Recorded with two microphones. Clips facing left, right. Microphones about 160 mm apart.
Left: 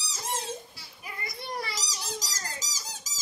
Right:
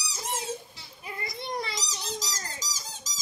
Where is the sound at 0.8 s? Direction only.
20° right (ahead or behind).